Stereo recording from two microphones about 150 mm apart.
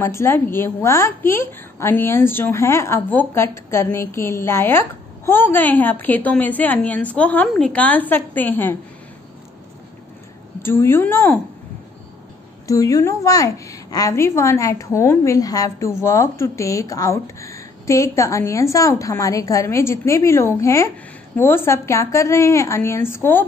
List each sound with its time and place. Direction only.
0.0 s a woman's voice: 15° left (ahead or behind)
10.6 s a woman's voice: 15° left (ahead or behind)
12.6 s a woman's voice: 20° left (ahead or behind)